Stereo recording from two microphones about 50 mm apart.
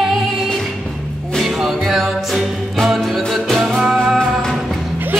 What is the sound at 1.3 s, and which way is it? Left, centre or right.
Music, centre.